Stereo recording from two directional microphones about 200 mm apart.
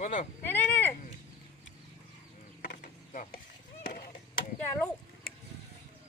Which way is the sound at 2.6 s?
55° left (ahead or behind).